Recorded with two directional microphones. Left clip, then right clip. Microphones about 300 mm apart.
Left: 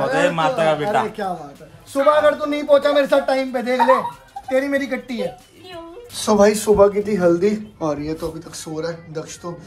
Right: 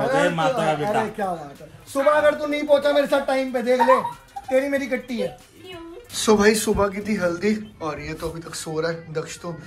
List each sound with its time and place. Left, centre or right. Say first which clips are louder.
0.2 s a man's voice: left 3 dB; centre
6.1 s speech: left 2 dB; centre